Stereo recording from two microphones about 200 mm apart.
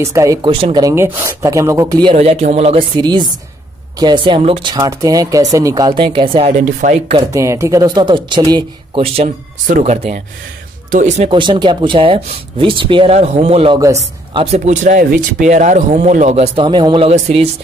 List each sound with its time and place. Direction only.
0.0 s speech: 15° right (ahead or behind)
2.1 s speech: 30° right (ahead or behind)
6.8 s speech: 40° right (ahead or behind)
7.3 s speech: 15° right (ahead or behind); by 11.2 s 40° right (ahead or behind)
11.2 s speech: 25° right (ahead or behind)